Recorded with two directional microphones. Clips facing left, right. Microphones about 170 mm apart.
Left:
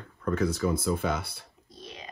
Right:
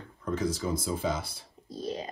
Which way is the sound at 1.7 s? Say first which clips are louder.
Right 11 dB; 35° right (ahead or behind).